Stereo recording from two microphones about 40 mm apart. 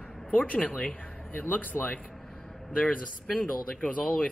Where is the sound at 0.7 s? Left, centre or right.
Left.